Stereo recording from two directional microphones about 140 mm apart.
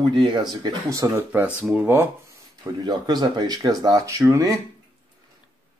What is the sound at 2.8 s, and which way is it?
Speech, 30° right (ahead or behind).